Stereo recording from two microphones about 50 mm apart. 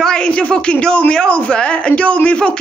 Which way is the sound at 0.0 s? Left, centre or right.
Centre.